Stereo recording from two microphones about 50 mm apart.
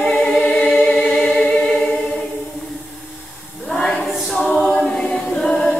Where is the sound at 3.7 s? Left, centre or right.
Centre.